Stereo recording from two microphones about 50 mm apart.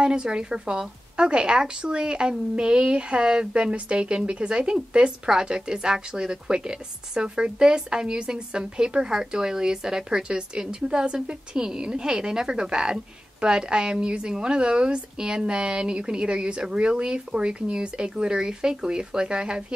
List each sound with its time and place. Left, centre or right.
0.0 s speech: centre